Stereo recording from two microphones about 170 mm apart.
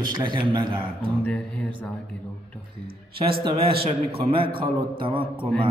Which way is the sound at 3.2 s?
30° right (ahead or behind).